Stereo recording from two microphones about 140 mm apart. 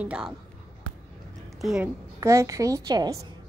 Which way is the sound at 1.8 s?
20° right (ahead or behind).